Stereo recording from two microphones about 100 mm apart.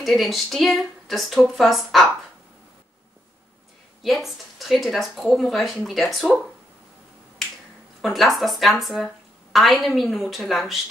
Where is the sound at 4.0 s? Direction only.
Centre (ahead or behind).